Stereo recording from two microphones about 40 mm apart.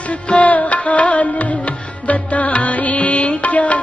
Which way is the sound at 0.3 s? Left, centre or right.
Left.